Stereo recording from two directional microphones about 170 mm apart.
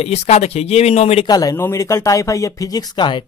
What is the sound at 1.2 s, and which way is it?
Speech, 20° left (ahead or behind).